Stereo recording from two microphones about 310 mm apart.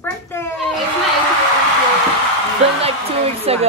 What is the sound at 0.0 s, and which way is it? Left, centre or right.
Children playing, centre.